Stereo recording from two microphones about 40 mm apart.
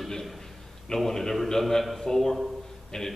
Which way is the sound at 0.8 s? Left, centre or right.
Centre.